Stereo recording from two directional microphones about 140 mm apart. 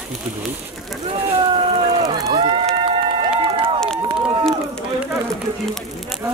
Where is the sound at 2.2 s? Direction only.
35° right (ahead or behind).